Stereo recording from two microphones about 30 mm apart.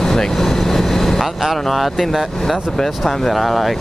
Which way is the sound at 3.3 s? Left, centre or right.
Centre.